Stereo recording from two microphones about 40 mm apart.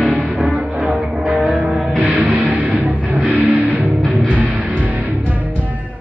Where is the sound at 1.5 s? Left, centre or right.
Right.